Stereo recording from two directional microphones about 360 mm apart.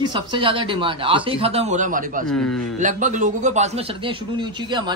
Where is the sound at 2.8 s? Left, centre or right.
Right.